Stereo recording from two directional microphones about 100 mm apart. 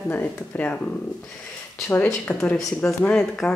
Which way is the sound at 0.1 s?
15° left (ahead or behind).